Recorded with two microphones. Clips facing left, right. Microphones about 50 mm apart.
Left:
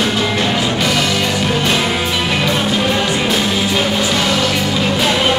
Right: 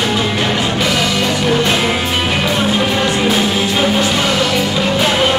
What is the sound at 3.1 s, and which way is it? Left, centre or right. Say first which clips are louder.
Music: right 2 dB; centre.